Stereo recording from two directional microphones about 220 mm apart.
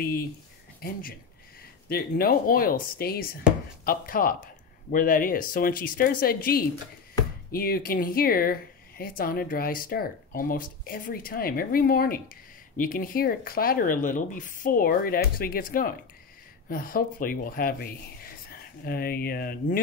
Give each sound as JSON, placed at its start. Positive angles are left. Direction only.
{"t": 0.0, "sound": "speech", "side_deg": 40}